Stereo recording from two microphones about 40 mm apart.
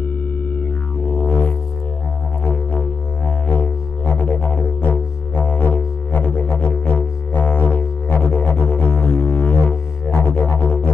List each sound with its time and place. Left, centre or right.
0.6 s music: left
4.0 s music: left
4.3 s music: left